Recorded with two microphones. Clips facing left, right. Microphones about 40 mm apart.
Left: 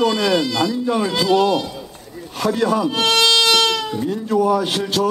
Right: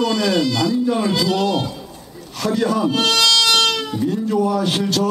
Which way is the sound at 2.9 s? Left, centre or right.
Left.